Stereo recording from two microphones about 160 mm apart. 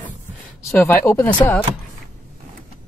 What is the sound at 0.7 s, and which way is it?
Speech, 15° left (ahead or behind).